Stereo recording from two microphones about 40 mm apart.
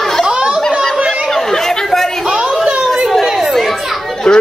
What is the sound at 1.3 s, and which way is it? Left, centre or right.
Chatter, centre.